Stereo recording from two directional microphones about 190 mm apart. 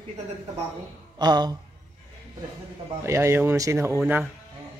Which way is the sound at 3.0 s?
15° right (ahead or behind).